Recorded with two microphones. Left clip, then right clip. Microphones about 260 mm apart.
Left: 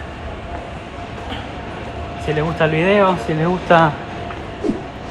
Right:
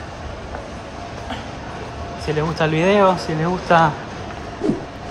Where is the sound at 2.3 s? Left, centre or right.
Centre.